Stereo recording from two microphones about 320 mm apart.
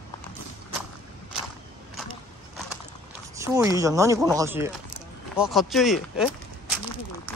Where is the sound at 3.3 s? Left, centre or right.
Centre.